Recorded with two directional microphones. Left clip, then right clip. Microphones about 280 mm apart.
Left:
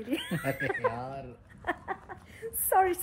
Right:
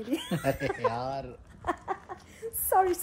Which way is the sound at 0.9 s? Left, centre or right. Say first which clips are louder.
Right 5 dB; right.